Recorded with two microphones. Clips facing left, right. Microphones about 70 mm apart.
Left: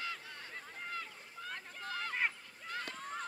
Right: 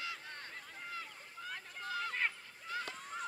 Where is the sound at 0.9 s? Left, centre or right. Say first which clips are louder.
Left 2 dB; left.